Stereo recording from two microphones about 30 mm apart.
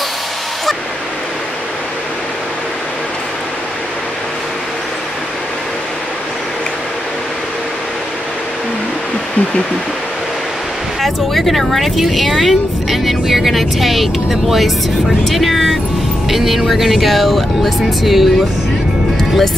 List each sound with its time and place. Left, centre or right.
11.0 s speech: centre
17.1 s speech: centre
19.1 s music: centre